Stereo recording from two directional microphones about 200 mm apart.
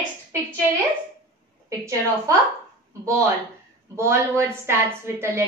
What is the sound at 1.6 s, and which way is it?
Speech, 15° right (ahead or behind).